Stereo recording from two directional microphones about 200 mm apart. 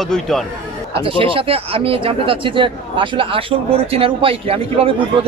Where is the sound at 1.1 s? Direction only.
25° right (ahead or behind).